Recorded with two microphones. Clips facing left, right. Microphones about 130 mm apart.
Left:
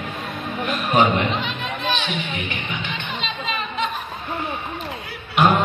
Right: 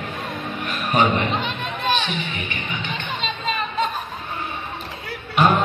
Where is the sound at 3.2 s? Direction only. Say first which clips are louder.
Right 3 dB; 40° right (ahead or behind).